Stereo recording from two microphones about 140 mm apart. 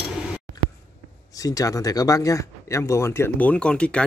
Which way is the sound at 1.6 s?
25° left (ahead or behind).